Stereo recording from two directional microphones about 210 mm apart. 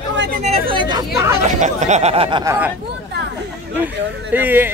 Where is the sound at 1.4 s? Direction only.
35° right (ahead or behind).